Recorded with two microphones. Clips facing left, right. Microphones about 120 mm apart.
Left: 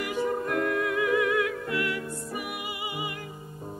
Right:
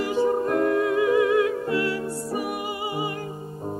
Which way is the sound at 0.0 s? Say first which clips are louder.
Right 6 dB; 30° right (ahead or behind).